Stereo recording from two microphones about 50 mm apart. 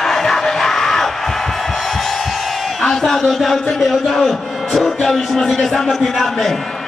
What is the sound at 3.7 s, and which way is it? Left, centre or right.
A man's voice, centre.